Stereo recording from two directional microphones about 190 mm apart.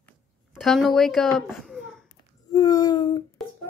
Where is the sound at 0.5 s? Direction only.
Centre (ahead or behind).